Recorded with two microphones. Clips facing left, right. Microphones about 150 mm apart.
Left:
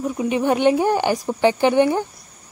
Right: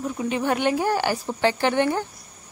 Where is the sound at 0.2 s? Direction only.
15° left (ahead or behind).